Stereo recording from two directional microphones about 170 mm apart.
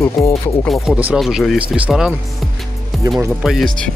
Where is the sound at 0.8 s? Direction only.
5° right (ahead or behind).